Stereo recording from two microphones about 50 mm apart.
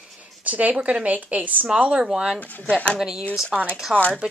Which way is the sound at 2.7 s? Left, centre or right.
Left.